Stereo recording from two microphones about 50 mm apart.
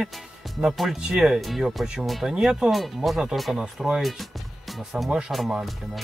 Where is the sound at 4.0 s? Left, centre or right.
Centre.